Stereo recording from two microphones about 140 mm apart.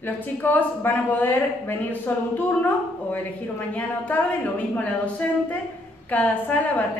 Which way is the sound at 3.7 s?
10° left (ahead or behind).